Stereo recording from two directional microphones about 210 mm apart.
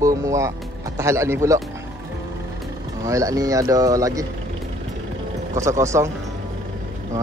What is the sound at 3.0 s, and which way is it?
Speech, 15° right (ahead or behind).